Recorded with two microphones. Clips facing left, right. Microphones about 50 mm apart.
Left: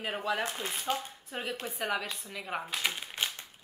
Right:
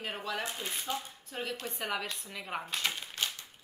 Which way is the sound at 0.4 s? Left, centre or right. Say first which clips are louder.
Left 3 dB; left.